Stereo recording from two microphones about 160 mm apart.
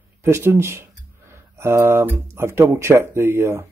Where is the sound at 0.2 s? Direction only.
15° right (ahead or behind).